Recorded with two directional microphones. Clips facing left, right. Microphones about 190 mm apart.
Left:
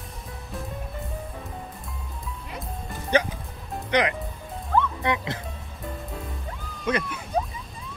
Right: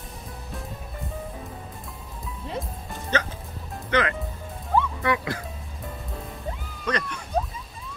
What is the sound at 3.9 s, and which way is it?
Speech, 15° left (ahead or behind).